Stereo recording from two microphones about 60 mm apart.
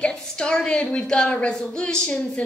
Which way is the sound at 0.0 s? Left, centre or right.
Centre.